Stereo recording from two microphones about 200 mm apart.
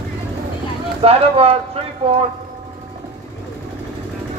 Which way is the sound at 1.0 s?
30° right (ahead or behind).